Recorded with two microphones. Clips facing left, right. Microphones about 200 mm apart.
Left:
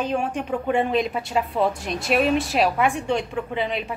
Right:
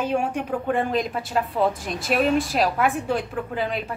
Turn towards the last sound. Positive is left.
turn(degrees=0)  # may be behind; listen again after turning